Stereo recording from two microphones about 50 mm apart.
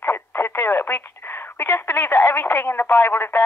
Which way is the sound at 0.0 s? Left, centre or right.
Left.